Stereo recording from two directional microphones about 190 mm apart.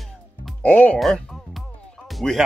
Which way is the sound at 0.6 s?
5° left (ahead or behind).